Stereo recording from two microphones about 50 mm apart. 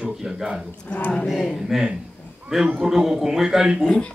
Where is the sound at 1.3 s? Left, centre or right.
Centre.